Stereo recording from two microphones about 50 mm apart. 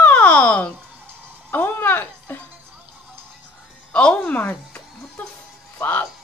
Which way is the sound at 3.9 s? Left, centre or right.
Left.